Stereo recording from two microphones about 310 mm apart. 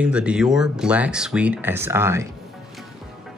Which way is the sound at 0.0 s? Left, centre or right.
Centre.